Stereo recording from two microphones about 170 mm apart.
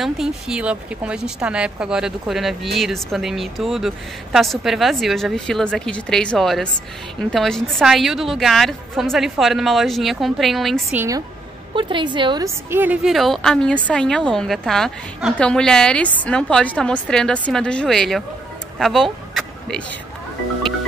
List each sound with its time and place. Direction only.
0.0 s a woman's voice: 5° right (ahead or behind)
11.0 s a woman's voice: 20° right (ahead or behind); by 18.2 s centre (ahead or behind)
18.8 s vehicle: centre (ahead or behind)